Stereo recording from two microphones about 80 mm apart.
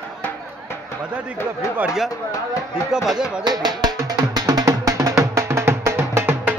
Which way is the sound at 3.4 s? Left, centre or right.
Right.